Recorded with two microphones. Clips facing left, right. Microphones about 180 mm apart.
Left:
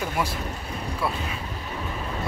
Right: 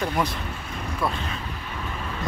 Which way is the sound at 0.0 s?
10° left (ahead or behind).